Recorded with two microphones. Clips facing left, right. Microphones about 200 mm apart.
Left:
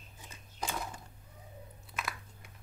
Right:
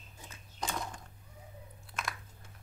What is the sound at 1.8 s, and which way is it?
Chewing, 5° left (ahead or behind).